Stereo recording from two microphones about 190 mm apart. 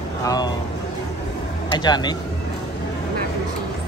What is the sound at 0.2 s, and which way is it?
Speech, 20° left (ahead or behind).